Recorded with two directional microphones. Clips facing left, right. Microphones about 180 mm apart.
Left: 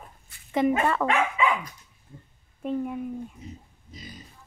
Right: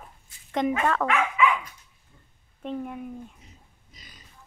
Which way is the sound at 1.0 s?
30° left (ahead or behind).